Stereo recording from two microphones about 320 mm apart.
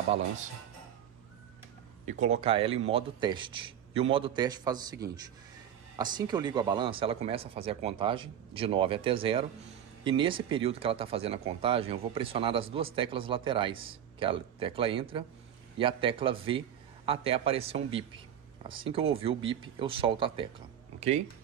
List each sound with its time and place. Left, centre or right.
2.0 s speech: right